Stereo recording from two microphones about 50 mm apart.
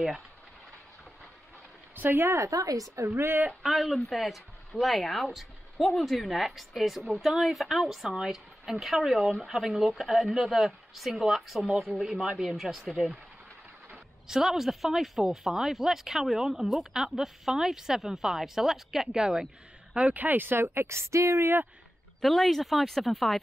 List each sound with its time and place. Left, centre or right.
2.0 s a woman's voice: right
2.2 s a woman's voice: right
3.1 s a woman's voice: right
3.6 s a woman's voice: centre
14.2 s a woman's voice: centre
20.0 s speech: right
21.4 s speech: right
22.2 s speech: centre